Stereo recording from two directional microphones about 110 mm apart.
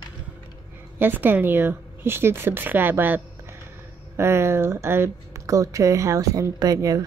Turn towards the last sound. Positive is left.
turn(degrees=-30)  # may be behind; listen again after turning